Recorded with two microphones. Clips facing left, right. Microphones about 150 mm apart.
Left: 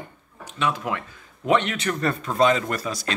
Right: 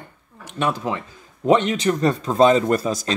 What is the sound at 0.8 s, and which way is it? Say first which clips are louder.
A man's voice: right 3 dB; 25° right (ahead or behind).